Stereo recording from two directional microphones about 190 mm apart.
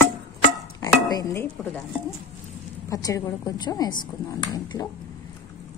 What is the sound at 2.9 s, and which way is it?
Speech, 20° left (ahead or behind).